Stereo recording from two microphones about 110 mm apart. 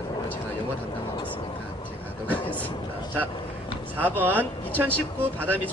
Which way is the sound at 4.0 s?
15° right (ahead or behind).